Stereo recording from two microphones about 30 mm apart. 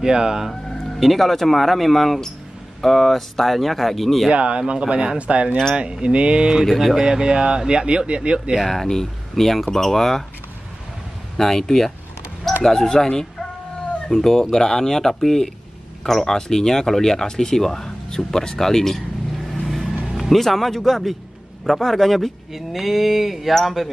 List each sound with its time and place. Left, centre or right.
0.0 s speech: right
0.9 s speech: centre
4.3 s speech: right
5.2 s speech: right
5.8 s speech: right
6.6 s speech: centre
7.0 s speech: right
8.6 s speech: centre
11.3 s speech: centre
14.1 s speech: centre
19.6 s vehicle: centre
20.3 s speech: centre
22.5 s a sound: centre